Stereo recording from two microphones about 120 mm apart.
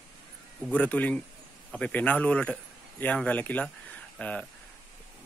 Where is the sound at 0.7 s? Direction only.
10° left (ahead or behind).